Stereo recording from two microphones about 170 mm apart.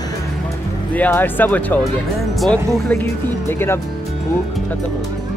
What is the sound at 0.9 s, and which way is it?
Speech, 10° left (ahead or behind).